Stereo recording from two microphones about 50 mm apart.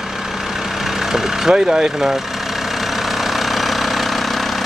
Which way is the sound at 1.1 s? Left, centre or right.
Centre.